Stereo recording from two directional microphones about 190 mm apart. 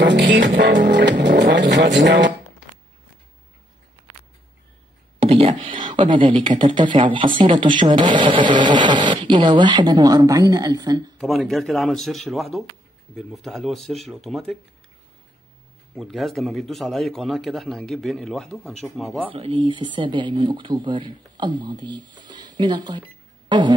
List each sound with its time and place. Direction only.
0.0 s music: 65° right (ahead or behind)
1.2 s vehicle: 70° right (ahead or behind)
5.2 s a sound: 30° right (ahead or behind)
6.1 s speech: 25° right (ahead or behind)
11.1 s a man's voice: centre (ahead or behind)
16.0 s a man's voice: centre (ahead or behind)
19.3 s speech: 30° right (ahead or behind)